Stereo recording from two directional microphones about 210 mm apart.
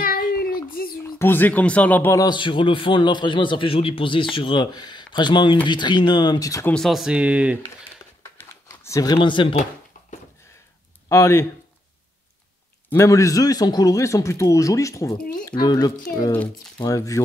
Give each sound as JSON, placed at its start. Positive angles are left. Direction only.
{"t": 0.8, "sound": "a sound", "side_deg": 45}
{"t": 1.1, "sound": "speech", "side_deg": 10}
{"t": 6.7, "sound": "speech", "side_deg": 0}
{"t": 8.2, "sound": "computer keyboard", "side_deg": 15}
{"t": 11.1, "sound": "a man's voice", "side_deg": 15}
{"t": 12.9, "sound": "a man's voice", "side_deg": 15}
{"t": 16.2, "sound": "a man's voice", "side_deg": 10}